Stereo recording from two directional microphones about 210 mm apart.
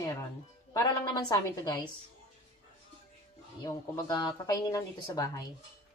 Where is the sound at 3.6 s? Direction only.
15° left (ahead or behind).